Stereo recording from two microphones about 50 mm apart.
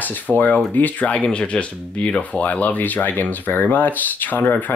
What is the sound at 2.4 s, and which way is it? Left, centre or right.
Speech, left.